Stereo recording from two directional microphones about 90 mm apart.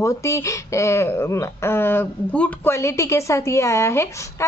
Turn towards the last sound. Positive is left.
turn(degrees=30)  # may be behind; listen again after turning